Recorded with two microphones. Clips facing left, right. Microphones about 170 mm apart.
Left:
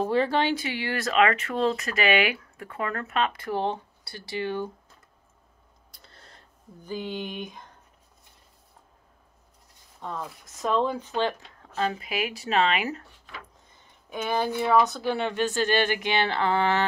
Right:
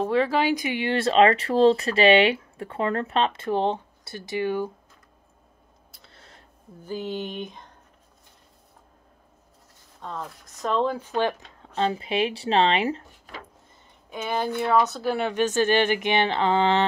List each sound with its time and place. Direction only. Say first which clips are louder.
0.0 s speech: right 2 dB; centre (ahead or behind)
0.7 s speech: right 5 dB; 20° right (ahead or behind)
5.9 s a sound: right 1 dB; centre (ahead or behind)
10.0 s speech: even; 10° left (ahead or behind); by 11.4 s 15° right (ahead or behind)
11.7 s speech: right 4 dB; 25° right (ahead or behind)
14.4 s speech: even; 10° left (ahead or behind); by 16.8 s 20° right (ahead or behind)